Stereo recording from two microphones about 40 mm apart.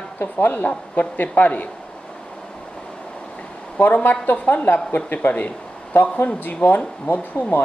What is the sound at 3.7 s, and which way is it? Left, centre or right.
Speech, left.